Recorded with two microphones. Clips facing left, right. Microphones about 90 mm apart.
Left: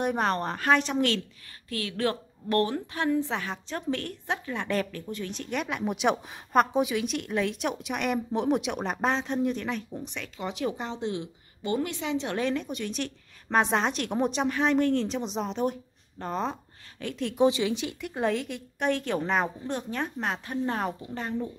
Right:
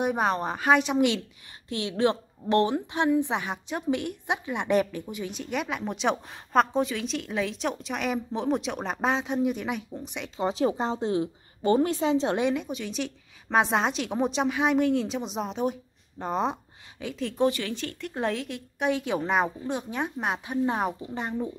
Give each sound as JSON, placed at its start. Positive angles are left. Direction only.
{"t": 0.0, "sound": "a woman's voice", "side_deg": -5}
{"t": 1.7, "sound": "a woman's voice", "side_deg": -20}
{"t": 10.1, "sound": "a woman's voice", "side_deg": -20}
{"t": 10.4, "sound": "a woman's voice", "side_deg": -30}
{"t": 12.5, "sound": "a woman's voice", "side_deg": 0}
{"t": 16.2, "sound": "a woman's voice", "side_deg": -15}
{"t": 17.0, "sound": "a woman's voice", "side_deg": 0}
{"t": 17.4, "sound": "speech", "side_deg": 15}
{"t": 18.0, "sound": "a woman's voice", "side_deg": 0}